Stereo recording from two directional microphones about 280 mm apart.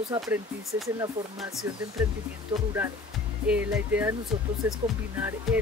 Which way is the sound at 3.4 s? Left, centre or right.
Centre.